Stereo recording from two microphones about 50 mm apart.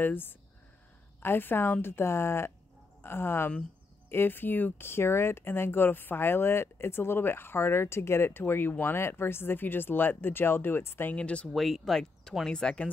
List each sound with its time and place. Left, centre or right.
0.0 s a woman's voice: left
4.8 s speech: left
11.1 s speech: left
11.5 s speech: centre